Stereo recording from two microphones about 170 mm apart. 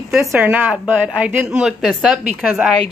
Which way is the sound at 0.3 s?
10° right (ahead or behind).